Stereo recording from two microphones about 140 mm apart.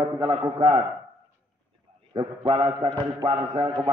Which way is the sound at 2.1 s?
40° right (ahead or behind).